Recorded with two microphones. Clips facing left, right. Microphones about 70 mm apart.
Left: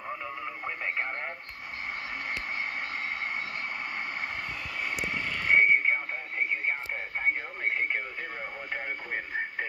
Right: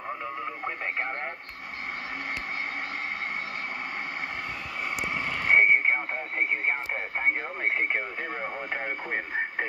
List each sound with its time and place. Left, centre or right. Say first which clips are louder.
0.7 s radio: even; centre
5.0 s vehicle: right 2 dB; centre
5.5 s radio: right 2 dB; right
6.3 s radio: right 2 dB; right